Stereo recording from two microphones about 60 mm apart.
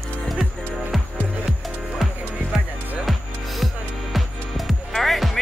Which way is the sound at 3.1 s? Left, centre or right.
Centre.